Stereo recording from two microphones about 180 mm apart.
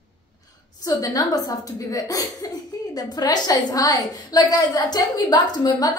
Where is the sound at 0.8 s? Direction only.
20° left (ahead or behind).